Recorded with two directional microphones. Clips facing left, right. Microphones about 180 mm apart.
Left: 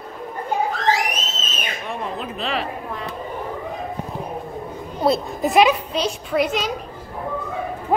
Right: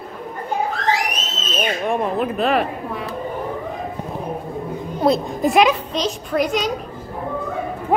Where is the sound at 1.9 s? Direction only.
55° right (ahead or behind).